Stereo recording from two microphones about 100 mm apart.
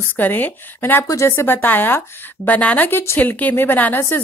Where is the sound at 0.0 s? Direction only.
20° left (ahead or behind).